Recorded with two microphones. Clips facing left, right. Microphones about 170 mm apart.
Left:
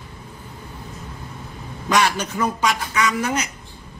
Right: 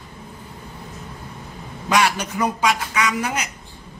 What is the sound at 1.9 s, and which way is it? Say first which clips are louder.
Speech: even; 10° right (ahead or behind).